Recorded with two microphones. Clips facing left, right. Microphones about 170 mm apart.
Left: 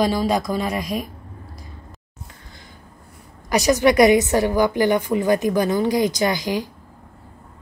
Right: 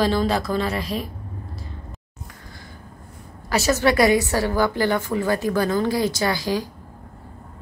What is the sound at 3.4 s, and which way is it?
A woman's voice, 15° left (ahead or behind).